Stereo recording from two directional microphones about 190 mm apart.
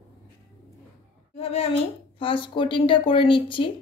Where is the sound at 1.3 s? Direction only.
30° left (ahead or behind).